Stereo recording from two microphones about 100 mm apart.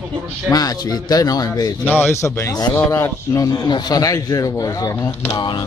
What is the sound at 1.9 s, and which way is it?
A man's voice, 20° left (ahead or behind).